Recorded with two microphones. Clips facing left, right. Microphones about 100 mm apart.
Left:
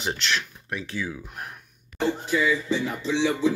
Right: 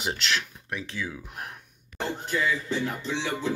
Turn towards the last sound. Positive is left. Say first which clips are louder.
# left 7 dB
turn(degrees=0)  # may be behind; listen again after turning